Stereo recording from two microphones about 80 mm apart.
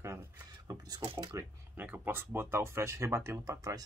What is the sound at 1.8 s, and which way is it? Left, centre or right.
Speech, right.